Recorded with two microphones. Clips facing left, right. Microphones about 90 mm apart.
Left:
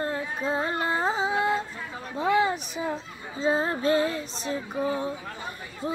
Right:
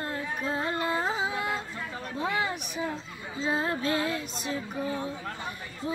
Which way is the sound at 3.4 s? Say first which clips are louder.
Left 4 dB; 30° left (ahead or behind).